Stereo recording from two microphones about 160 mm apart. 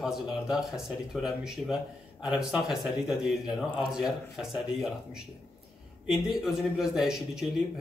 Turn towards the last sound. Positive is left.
turn(degrees=-5)  # may be behind; listen again after turning